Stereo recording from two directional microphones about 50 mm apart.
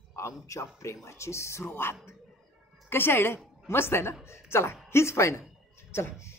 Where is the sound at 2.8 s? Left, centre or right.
Left.